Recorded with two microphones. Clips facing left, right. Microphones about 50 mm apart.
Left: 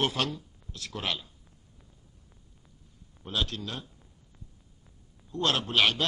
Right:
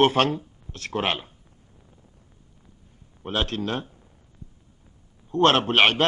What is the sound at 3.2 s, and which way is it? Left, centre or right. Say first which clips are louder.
Speech: right 6 dB; right.